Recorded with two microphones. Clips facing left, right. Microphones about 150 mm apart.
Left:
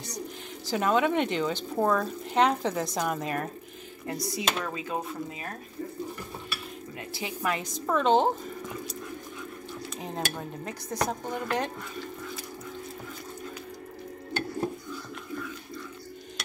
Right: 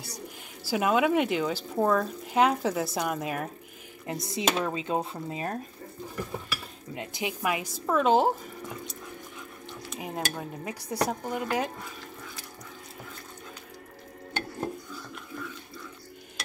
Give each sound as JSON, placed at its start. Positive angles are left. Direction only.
{"t": 0.7, "sound": "speech", "side_deg": -10}
{"t": 4.1, "sound": "speech", "side_deg": -20}
{"t": 7.0, "sound": "speech", "side_deg": -15}
{"t": 9.8, "sound": "speech", "side_deg": -10}